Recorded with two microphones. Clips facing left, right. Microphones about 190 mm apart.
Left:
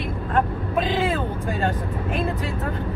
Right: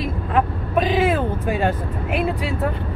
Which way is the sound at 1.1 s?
10° right (ahead or behind).